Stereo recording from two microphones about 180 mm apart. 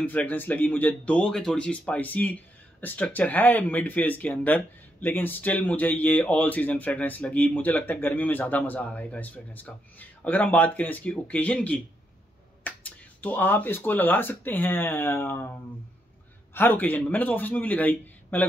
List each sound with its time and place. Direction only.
0.0 s speech: 10° left (ahead or behind)
16.5 s speech: 10° left (ahead or behind)